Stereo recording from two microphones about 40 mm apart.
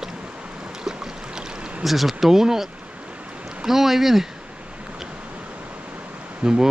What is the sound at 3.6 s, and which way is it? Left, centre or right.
Speech, centre.